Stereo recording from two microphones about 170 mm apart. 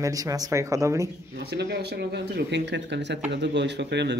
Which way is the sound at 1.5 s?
80° right.